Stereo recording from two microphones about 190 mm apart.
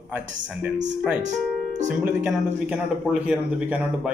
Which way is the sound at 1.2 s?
40° right (ahead or behind).